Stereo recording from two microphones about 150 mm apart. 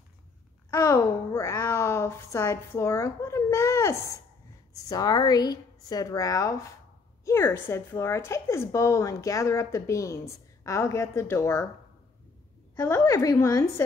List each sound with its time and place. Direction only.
0.7 s a woman's voice: 20° left (ahead or behind)
12.8 s a woman's voice: 20° left (ahead or behind)